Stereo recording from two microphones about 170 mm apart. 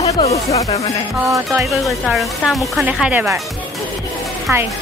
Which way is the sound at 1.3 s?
15° right (ahead or behind).